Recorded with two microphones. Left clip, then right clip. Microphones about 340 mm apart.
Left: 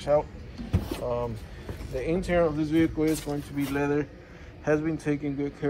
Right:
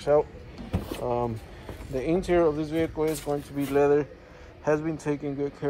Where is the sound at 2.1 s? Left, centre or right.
Centre.